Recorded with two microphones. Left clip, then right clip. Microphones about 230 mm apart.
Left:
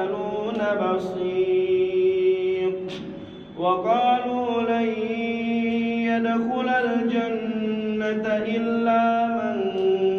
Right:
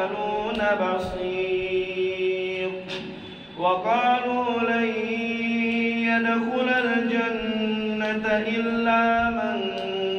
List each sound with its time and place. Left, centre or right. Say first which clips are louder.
3.6 s mantra: left 1 dB; right
6.0 s mantra: even; right
8.8 s music: even; right